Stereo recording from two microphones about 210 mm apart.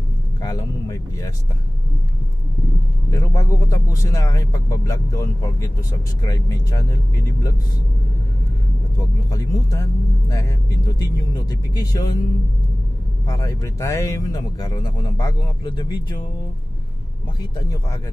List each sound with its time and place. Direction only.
0.4 s speech: 15° left (ahead or behind)
3.1 s speech: 15° left (ahead or behind)
9.3 s speech: 15° left (ahead or behind)
13.3 s speech: 15° left (ahead or behind)